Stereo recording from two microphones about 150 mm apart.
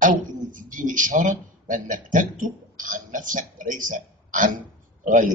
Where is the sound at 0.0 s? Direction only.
60° right (ahead or behind).